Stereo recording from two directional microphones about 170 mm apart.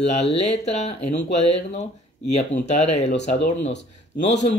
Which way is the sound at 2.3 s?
40° left (ahead or behind).